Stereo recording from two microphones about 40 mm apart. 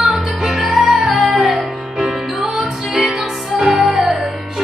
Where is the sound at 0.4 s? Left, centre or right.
Right.